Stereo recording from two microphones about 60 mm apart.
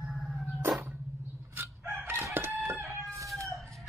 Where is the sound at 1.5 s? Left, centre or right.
Right.